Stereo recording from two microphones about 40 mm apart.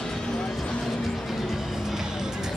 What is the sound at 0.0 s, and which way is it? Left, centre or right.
Vehicle, centre.